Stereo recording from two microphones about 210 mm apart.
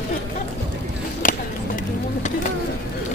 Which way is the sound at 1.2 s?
40° left (ahead or behind).